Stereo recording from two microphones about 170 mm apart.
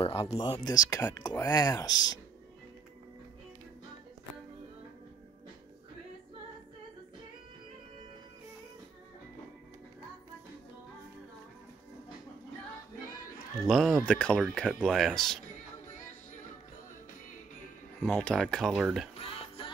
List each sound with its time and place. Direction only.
0.0 s speech: 35° left (ahead or behind)
13.7 s speech: centre (ahead or behind)
18.0 s speech: 10° left (ahead or behind)
19.1 s music: 35° left (ahead or behind)